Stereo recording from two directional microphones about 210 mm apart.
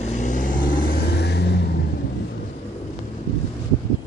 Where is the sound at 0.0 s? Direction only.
35° left (ahead or behind); by 1.8 s 50° left (ahead or behind).